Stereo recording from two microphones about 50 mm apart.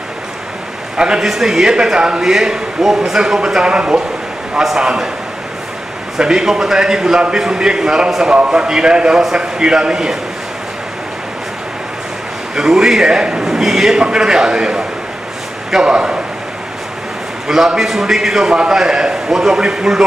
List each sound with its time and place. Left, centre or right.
0.9 s a man's voice: centre
1.2 s a man's voice: centre
6.1 s a man's voice: centre
12.5 s a man's voice: centre
17.5 s a man's voice: centre